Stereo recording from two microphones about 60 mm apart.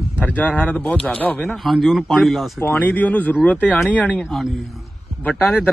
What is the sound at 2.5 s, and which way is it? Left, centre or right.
Speech, left.